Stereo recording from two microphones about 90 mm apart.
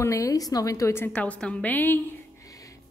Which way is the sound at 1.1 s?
15° left (ahead or behind).